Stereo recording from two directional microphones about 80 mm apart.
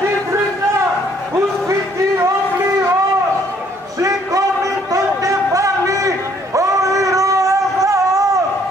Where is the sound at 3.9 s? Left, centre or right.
Right.